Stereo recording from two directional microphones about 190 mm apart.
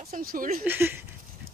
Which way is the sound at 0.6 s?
10° right (ahead or behind).